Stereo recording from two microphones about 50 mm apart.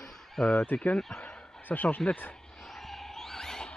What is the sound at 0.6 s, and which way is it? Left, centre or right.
Speech, left.